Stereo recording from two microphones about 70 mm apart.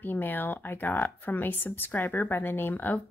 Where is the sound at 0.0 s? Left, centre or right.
Left.